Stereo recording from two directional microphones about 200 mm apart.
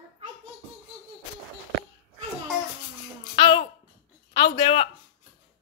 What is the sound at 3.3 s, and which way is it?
Babbling, 25° left (ahead or behind).